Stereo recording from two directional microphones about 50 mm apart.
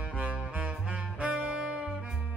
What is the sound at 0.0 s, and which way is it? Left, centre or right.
Music, right.